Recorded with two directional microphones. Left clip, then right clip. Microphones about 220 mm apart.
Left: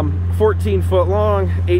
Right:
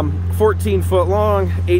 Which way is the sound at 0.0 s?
20° right (ahead or behind).